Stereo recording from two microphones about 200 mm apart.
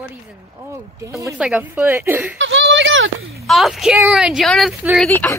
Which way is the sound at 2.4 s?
65° right (ahead or behind).